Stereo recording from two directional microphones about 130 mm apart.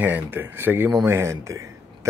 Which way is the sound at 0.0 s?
15° right (ahead or behind).